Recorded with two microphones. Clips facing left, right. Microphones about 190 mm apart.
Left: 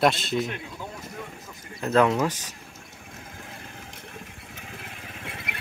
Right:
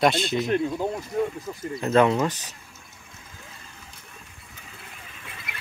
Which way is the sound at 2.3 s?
10° left (ahead or behind).